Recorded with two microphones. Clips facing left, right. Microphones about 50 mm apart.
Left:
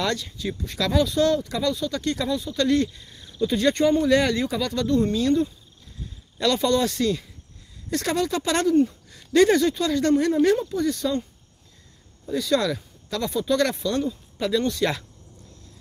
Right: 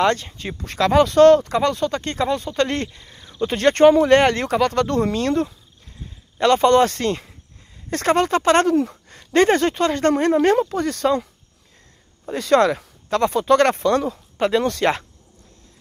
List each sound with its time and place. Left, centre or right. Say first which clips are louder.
0.0 s speech: right 7 dB; right
6.4 s speech: right 7 dB; right
12.3 s speech: right 6 dB; right
14.3 s a sound: right 6 dB; right
14.7 s speech: right 4 dB; right